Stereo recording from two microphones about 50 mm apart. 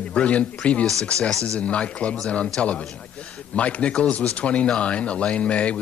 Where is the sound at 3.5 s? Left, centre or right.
Left.